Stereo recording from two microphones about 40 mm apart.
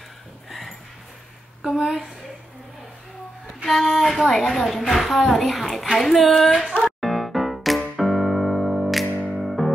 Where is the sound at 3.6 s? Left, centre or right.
Centre.